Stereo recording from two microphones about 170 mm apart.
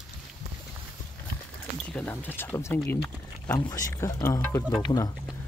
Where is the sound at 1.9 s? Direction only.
10° left (ahead or behind).